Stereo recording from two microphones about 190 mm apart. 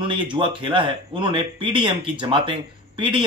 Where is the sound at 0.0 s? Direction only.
25° right (ahead or behind).